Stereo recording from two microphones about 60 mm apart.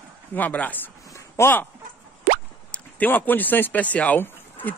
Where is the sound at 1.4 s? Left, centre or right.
Left.